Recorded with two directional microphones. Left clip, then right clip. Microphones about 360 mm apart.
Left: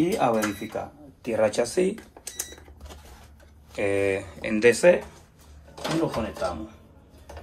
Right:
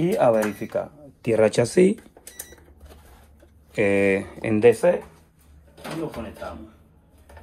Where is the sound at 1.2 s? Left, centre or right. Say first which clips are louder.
Right 4 dB; centre.